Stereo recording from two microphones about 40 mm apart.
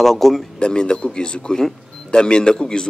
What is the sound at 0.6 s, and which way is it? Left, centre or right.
A man's voice, left.